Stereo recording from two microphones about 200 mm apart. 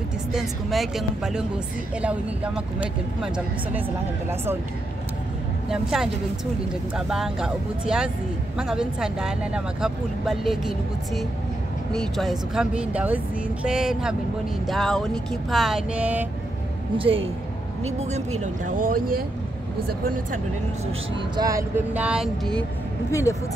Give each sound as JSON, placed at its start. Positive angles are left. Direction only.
{"t": 0.3, "sound": "speech", "side_deg": 0}
{"t": 5.7, "sound": "speech", "side_deg": 0}
{"t": 16.9, "sound": "speech", "side_deg": -25}
{"t": 18.4, "sound": "speech", "side_deg": -45}
{"t": 21.4, "sound": "speech", "side_deg": -15}
{"t": 23.3, "sound": "speech", "side_deg": 15}